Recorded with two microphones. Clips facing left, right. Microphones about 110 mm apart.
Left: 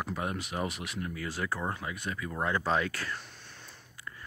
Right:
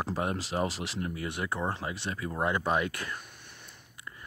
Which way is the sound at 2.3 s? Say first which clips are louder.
Right 1 dB; 15° right (ahead or behind).